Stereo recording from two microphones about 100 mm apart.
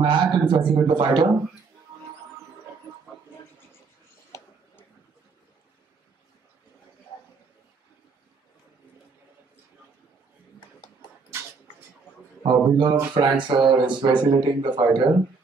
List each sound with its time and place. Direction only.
0.0 s speech: 50° right (ahead or behind)
4.3 s a sound: 30° left (ahead or behind)
12.4 s speech: 50° right (ahead or behind)